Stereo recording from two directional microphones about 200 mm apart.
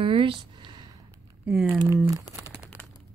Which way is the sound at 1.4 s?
5° right (ahead or behind).